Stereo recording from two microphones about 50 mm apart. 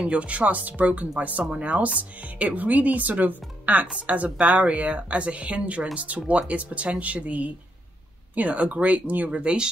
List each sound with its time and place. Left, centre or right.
0.0 s speech: right
9.4 s speech: right